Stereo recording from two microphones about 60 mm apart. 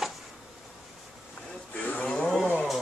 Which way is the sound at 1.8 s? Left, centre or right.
Left.